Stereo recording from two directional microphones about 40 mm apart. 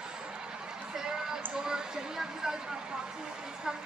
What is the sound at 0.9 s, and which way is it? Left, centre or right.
Run, centre.